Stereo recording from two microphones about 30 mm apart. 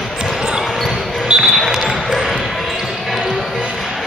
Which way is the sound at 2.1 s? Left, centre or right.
Centre.